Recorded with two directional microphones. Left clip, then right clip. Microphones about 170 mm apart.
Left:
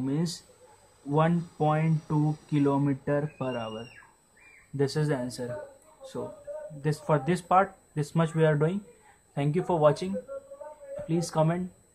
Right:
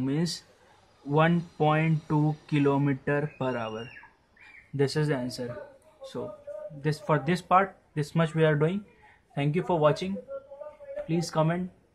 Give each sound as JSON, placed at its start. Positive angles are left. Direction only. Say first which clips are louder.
{"t": 0.0, "sound": "speech", "louder": "right 1 dB", "side_deg": -20}
{"t": 6.8, "sound": "speech", "louder": "even", "side_deg": -10}